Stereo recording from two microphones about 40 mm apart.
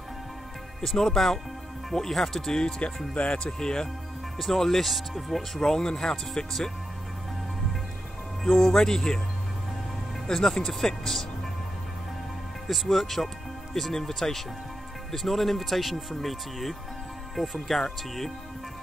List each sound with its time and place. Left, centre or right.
0.7 s speech: centre
4.4 s speech: centre
5.6 s speech: centre
8.5 s speech: centre
10.2 s speech: centre
12.6 s speech: centre